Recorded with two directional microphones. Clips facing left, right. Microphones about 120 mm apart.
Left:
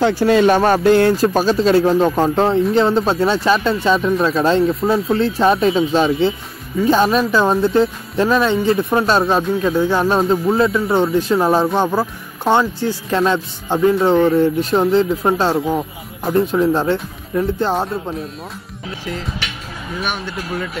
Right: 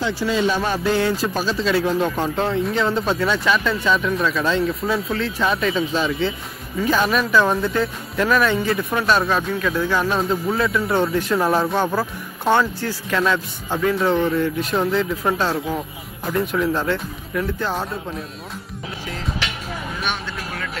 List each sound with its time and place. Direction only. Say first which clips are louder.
0.2 s speech: left 8 dB; 60° left (ahead or behind)
1.2 s speech: left 7 dB; 45° left (ahead or behind)
20.0 s speech: left 6 dB; centre (ahead or behind)